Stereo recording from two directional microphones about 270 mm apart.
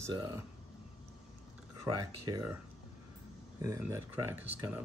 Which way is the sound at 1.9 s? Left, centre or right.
Right.